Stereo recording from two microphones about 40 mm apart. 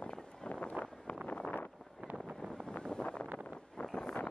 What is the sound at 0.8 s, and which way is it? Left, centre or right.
Vehicle, right.